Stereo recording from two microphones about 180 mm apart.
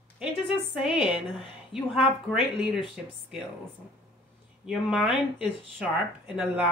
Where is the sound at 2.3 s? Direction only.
Centre (ahead or behind).